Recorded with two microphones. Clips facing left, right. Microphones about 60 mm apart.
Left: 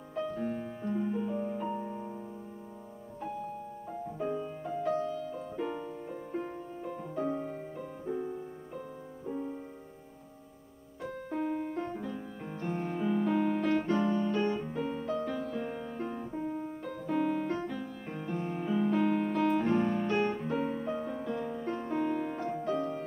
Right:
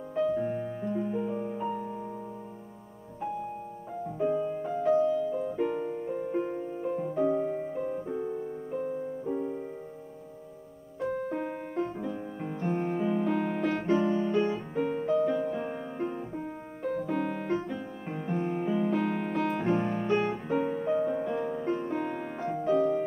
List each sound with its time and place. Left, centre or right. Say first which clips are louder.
0.2 s music: right 6 dB; centre
4.2 s music: right 8 dB; centre
5.3 s music: right 7 dB; right
7.2 s music: right 6 dB; centre
8.1 s music: right 2 dB; centre
8.7 s music: right 12 dB; right
9.2 s music: right 2 dB; centre
11.1 s music: right 2 dB; centre
13.8 s music: right 3 dB; centre
14.9 s music: right 11 dB; right
17.0 s piano: left 5 dB; centre
17.5 s music: right 3 dB; centre
18.7 s music: left 2 dB; centre